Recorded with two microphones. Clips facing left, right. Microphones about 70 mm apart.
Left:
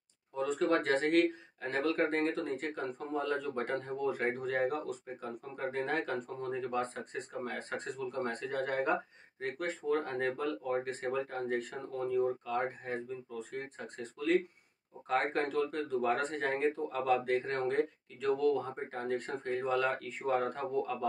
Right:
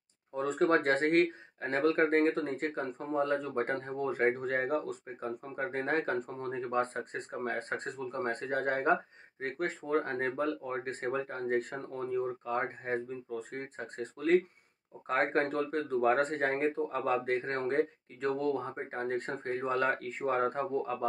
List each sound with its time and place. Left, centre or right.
0.4 s speech: right